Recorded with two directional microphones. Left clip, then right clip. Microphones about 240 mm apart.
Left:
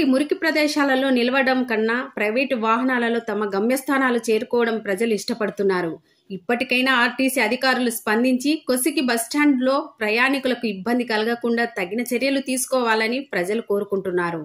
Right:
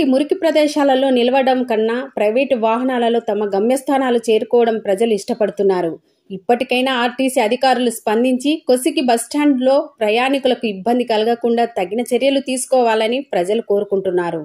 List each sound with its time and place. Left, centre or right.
0.0 s a woman's voice: centre